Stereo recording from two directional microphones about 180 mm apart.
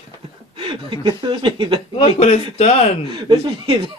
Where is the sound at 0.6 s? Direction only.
25° right (ahead or behind).